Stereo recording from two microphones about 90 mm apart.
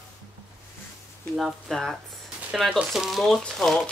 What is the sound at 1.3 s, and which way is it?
Speech, centre (ahead or behind).